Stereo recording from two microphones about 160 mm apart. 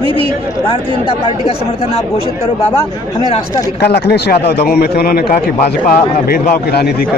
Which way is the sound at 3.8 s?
90° left.